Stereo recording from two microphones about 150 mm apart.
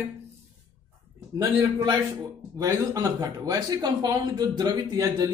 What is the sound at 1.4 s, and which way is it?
Speech, 25° right (ahead or behind).